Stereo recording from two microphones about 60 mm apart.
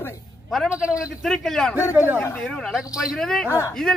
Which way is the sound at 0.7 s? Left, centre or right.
Right.